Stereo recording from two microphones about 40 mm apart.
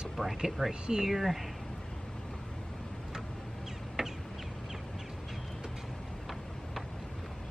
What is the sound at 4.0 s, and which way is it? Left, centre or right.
Bird, centre.